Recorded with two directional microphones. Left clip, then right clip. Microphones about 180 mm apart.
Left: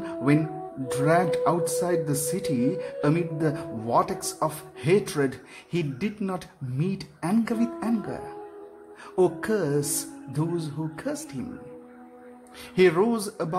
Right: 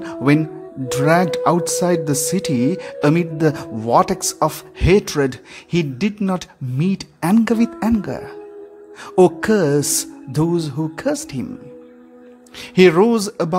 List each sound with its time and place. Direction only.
0.0 s speech: 40° right (ahead or behind)
12.5 s speech: 40° right (ahead or behind)